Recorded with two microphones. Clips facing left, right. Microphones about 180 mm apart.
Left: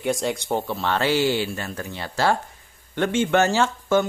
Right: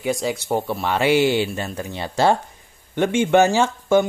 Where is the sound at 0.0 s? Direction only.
Centre (ahead or behind).